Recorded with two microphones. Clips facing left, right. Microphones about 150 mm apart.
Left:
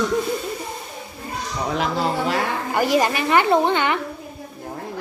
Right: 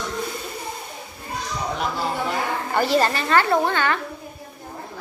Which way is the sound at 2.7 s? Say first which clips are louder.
Left 1 dB; 10° left (ahead or behind).